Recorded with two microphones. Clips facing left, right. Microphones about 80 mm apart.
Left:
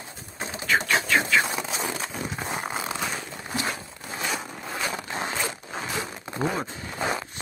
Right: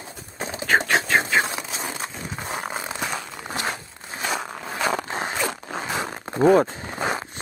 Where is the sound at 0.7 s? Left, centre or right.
Right.